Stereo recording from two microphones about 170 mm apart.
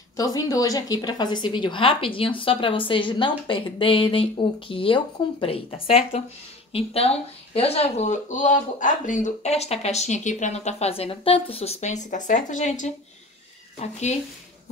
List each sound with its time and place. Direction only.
0.2 s speech: 20° left (ahead or behind); by 14.1 s 40° left (ahead or behind)